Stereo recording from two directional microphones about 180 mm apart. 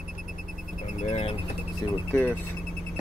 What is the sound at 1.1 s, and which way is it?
Speech, 35° left (ahead or behind).